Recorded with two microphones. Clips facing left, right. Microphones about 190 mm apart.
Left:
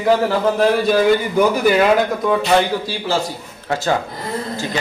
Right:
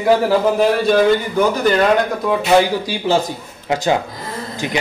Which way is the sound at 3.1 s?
20° right (ahead or behind).